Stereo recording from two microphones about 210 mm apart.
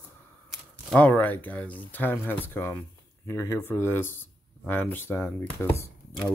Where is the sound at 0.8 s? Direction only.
5° left (ahead or behind).